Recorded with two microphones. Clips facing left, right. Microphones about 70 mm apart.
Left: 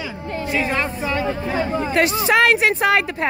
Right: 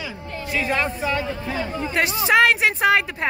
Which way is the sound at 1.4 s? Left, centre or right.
Left.